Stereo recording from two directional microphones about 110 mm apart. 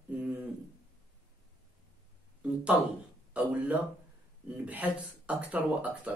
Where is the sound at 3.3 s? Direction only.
15° right (ahead or behind).